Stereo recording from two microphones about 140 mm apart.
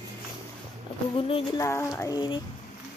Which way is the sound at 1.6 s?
20° left (ahead or behind).